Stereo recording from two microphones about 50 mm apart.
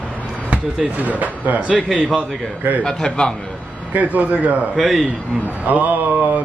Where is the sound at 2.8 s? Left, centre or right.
Centre.